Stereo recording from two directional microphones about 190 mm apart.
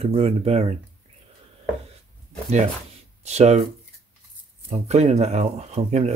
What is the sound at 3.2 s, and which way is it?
Speech, 35° right (ahead or behind).